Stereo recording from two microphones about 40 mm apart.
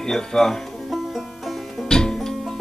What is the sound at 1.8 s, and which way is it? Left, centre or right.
Music, centre.